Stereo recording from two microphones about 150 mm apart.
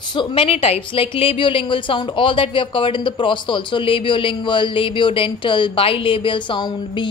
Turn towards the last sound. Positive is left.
turn(degrees=35)  # may be behind; listen again after turning